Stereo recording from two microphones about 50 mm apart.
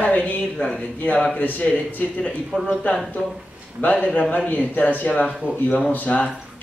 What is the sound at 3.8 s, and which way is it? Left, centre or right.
Speech, left.